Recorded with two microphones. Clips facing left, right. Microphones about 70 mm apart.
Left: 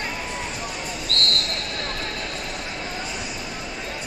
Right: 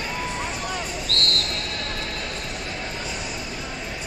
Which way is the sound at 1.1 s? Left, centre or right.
Left.